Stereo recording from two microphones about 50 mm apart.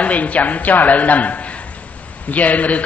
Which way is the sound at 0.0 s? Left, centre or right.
Left.